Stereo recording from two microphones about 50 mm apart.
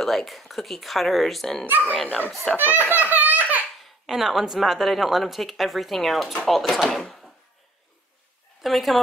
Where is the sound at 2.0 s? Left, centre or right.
Left.